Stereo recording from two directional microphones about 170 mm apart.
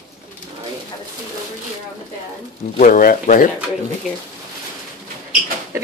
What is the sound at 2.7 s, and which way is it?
Speech, 50° left (ahead or behind).